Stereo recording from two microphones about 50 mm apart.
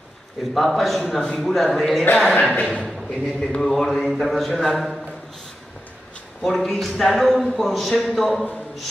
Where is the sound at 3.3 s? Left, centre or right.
Centre.